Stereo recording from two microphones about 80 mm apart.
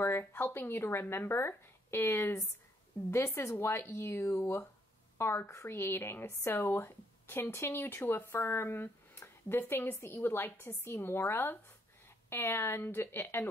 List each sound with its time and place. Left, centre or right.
0.0 s a woman's voice: left